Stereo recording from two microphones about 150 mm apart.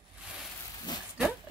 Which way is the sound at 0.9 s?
30° left (ahead or behind).